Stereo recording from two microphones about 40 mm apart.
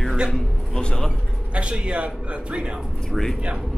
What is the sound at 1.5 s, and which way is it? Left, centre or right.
Speech, right.